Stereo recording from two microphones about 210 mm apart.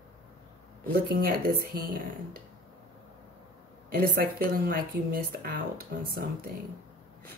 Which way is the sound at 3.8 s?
45° right (ahead or behind).